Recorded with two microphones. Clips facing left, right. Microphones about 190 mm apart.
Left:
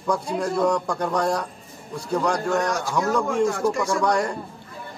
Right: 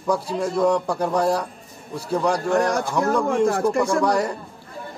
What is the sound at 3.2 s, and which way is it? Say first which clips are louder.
Speech: right 2 dB; 55° right (ahead or behind).